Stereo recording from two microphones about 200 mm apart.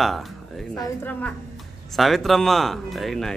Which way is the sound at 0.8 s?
10° left (ahead or behind).